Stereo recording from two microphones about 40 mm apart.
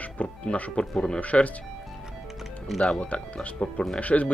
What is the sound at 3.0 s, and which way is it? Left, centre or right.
Speech, left.